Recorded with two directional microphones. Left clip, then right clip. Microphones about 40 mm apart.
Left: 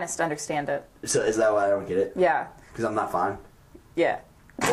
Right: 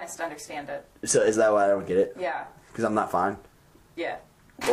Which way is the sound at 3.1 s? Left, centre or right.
Right.